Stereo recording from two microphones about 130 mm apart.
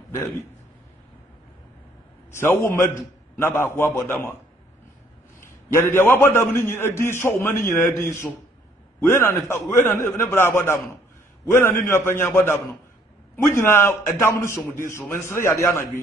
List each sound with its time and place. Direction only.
2.3 s a man's voice: 20° left (ahead or behind)
5.8 s a man's voice: 20° left (ahead or behind)